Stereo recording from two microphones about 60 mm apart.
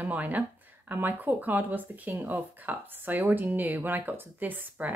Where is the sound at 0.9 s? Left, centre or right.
Right.